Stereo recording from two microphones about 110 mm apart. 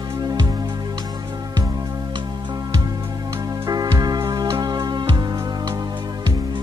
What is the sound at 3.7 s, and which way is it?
Music, 35° right (ahead or behind).